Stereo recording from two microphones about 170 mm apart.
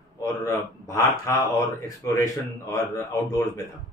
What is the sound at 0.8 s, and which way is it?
Speech, 15° left (ahead or behind).